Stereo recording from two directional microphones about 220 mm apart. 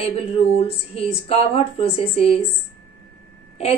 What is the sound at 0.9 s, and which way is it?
A woman's voice, 25° left (ahead or behind).